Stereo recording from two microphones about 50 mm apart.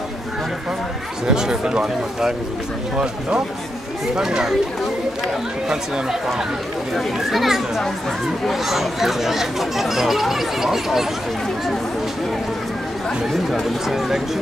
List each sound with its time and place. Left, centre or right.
1.2 s speech: centre
7.0 s speech: centre
13.3 s speech: centre